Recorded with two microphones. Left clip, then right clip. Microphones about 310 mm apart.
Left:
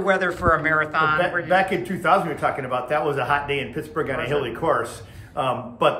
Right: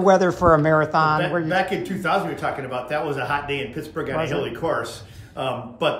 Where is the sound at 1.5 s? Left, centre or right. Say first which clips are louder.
Left 2 dB; centre.